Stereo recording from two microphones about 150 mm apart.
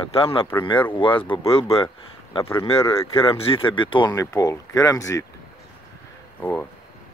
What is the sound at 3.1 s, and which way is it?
Speech, 35° left (ahead or behind).